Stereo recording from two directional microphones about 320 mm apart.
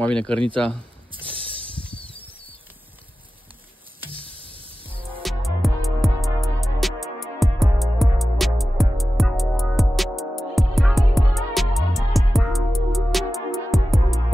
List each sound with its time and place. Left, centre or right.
0.0 s speech: centre
0.6 s a sound: centre
4.2 s music: centre
5.2 s music: centre